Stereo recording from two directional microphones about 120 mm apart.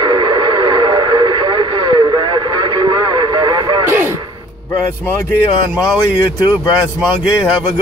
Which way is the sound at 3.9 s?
20° right (ahead or behind).